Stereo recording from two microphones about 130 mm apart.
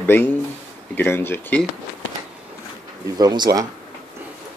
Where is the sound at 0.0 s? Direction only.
15° left (ahead or behind).